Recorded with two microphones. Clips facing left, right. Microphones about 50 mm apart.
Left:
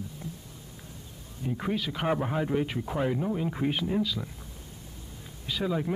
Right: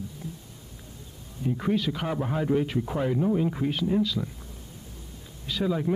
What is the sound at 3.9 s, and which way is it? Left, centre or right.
Speech, centre.